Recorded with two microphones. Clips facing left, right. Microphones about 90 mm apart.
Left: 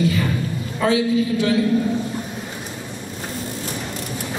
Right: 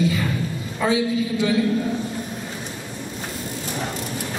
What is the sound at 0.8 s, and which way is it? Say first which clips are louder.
Speech: left 3 dB; 20° right (ahead or behind).